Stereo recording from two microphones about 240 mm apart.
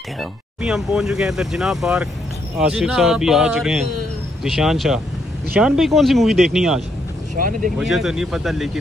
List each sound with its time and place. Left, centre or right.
0.2 s speech: centre
7.3 s speech: right
7.8 s speech: centre